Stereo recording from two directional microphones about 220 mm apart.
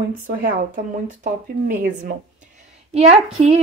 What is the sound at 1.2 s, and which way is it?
A woman's voice, 35° right (ahead or behind).